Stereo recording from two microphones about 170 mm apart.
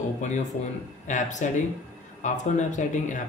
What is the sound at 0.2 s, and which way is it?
Speech, 45° left (ahead or behind).